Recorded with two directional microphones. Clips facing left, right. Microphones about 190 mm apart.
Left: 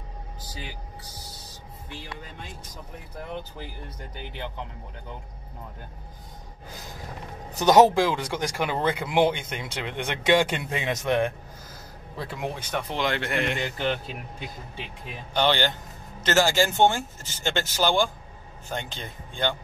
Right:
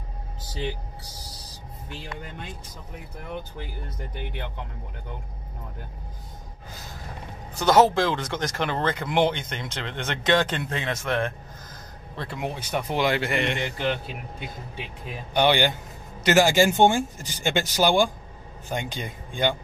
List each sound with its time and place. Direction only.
0.4 s speech: 25° right (ahead or behind)
7.5 s speech: 15° left (ahead or behind)
12.2 s a man's voice: centre (ahead or behind)
15.3 s a man's voice: 15° right (ahead or behind)